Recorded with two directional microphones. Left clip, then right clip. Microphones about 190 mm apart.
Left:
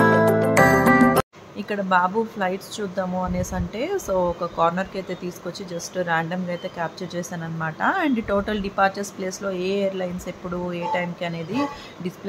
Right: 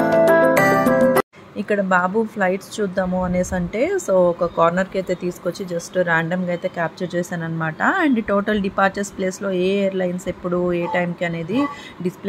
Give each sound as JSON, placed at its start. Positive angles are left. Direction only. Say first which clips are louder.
{"t": 0.2, "sound": "music", "louder": "right 4 dB", "side_deg": 0}
{"t": 1.6, "sound": "speech", "louder": "right 2 dB", "side_deg": -15}